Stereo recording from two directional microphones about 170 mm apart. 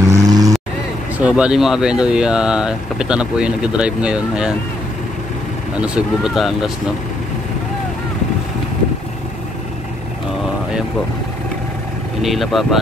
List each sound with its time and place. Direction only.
0.0 s vehicle: 20° right (ahead or behind)
1.1 s speech: 5° right (ahead or behind)
5.8 s speech: 5° right (ahead or behind)
12.2 s speech: centre (ahead or behind)